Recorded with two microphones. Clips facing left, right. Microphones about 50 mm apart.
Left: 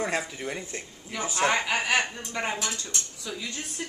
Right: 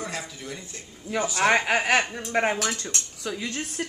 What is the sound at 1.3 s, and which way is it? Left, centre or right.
Speech, right.